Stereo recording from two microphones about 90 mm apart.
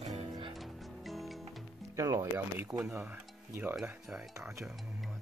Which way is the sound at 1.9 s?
35° right (ahead or behind).